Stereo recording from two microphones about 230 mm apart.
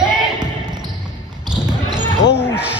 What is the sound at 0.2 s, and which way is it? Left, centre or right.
Basketball bounce, centre.